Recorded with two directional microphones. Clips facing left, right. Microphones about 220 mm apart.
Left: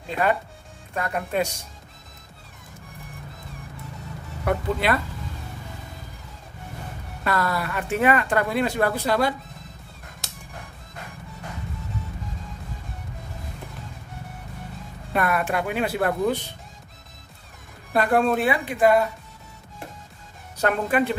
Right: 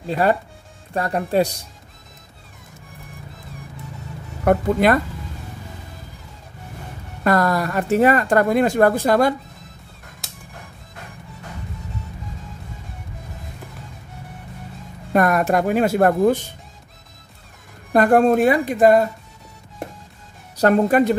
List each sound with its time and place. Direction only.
0.0 s speech: 35° right (ahead or behind)
4.5 s speech: 45° right (ahead or behind)
7.2 s speech: 45° right (ahead or behind)
10.2 s music: centre (ahead or behind)
15.1 s speech: 40° right (ahead or behind)
17.9 s speech: 45° right (ahead or behind)
20.5 s speech: 35° right (ahead or behind)